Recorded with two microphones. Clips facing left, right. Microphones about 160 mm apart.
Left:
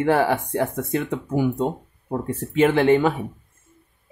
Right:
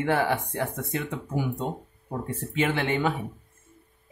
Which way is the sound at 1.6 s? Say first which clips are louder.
Left 7 dB; 45° left (ahead or behind).